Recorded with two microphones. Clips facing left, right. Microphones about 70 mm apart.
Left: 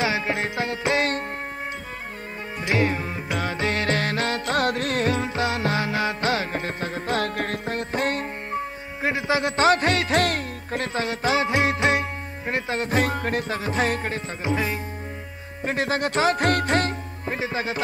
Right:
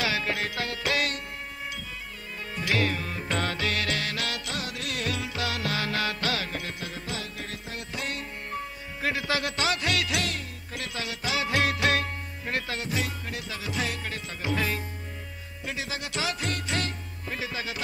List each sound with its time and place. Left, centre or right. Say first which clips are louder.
0.0 s music: left 4 dB; left
2.6 s music: left 4 dB; left
3.3 s music: left 1 dB; centre
3.5 s music: left 6 dB; left
4.6 s music: left 11 dB; left
7.2 s music: left 11 dB; left
9.0 s a man's voice: left 5 dB; left
9.7 s music: left 9 dB; left
11.4 s music: left 4 dB; left
12.8 s music: left 9 dB; left
14.4 s a man's voice: left 3 dB; centre
15.6 s speech: left 11 dB; left